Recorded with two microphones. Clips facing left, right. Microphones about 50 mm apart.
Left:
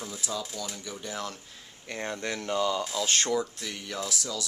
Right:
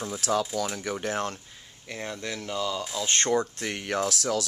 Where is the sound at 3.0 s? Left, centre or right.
Right.